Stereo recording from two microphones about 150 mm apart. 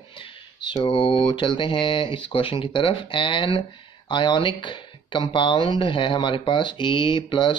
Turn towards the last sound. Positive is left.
turn(degrees=35)  # may be behind; listen again after turning